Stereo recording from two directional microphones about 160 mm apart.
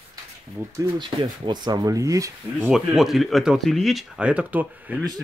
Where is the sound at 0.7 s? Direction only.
25° right (ahead or behind).